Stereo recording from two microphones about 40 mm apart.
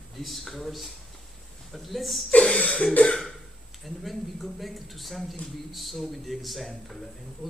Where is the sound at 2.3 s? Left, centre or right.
Left.